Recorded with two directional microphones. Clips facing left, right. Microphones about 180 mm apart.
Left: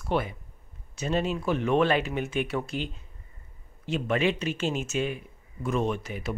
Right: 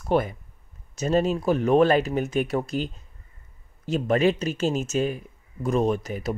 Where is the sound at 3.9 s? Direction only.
40° right (ahead or behind).